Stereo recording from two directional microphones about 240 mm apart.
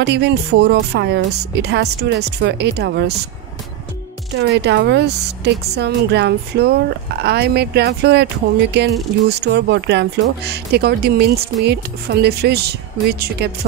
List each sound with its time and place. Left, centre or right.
0.0 s speech: right
4.4 s speech: right